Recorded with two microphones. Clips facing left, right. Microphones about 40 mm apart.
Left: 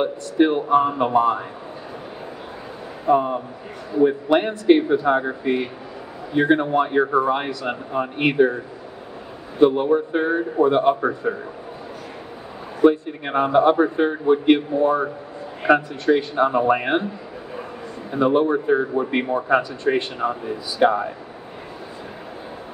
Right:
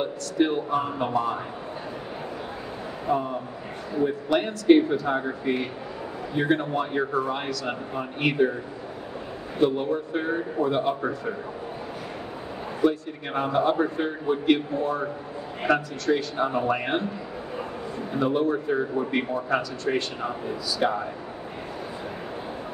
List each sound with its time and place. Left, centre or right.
0.0 s a man's voice: left
3.1 s a man's voice: left
9.6 s a man's voice: left
12.8 s a man's voice: left
18.1 s a man's voice: left